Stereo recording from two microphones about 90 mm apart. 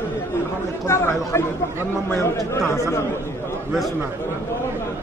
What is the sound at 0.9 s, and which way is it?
Speech, 30° left (ahead or behind).